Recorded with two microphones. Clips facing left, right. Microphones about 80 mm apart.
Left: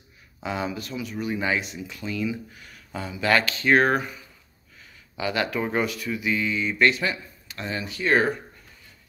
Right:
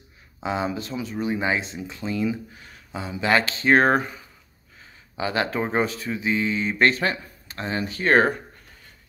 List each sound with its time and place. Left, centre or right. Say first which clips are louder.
0.4 s speech: right 3 dB; right